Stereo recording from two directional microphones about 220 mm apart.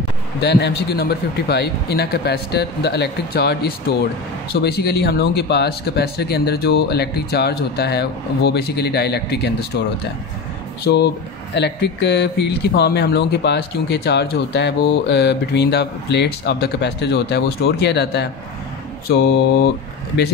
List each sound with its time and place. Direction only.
0.4 s speech: 50° left (ahead or behind)
10.8 s speech: 50° left (ahead or behind)